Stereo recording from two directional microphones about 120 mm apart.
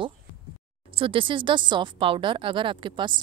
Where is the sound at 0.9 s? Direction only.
45° right (ahead or behind).